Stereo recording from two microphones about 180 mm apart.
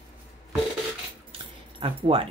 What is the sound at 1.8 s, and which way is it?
Speech, 30° right (ahead or behind).